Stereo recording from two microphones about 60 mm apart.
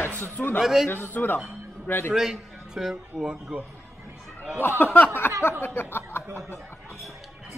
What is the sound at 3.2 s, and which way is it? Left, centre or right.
Speech, centre.